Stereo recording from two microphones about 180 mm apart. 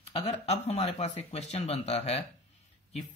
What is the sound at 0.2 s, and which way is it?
Speech, 35° left (ahead or behind).